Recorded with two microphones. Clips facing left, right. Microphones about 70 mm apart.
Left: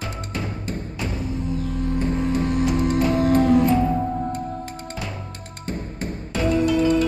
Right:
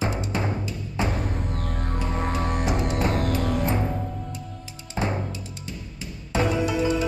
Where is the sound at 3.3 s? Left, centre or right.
Left.